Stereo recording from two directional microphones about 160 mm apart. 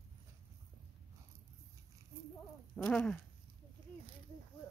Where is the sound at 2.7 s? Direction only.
5° left (ahead or behind).